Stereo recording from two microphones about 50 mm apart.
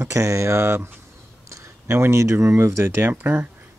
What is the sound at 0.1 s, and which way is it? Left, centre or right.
Speech, right.